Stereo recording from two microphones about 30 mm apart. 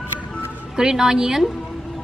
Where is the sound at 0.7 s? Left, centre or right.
Right.